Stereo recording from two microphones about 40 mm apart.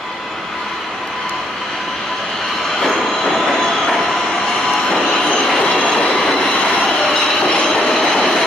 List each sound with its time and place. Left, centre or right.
2.8 s train: centre
4.8 s vehicle: centre
5.6 s train: left
6.1 s train: centre